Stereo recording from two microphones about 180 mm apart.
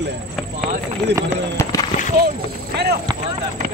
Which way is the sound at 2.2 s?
65° right (ahead or behind).